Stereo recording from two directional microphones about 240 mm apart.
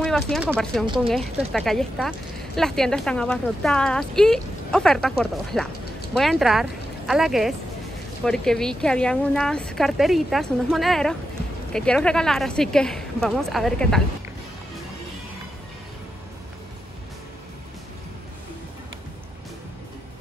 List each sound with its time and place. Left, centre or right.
0.0 s speech: centre
0.8 s speech: right
1.1 s speech: centre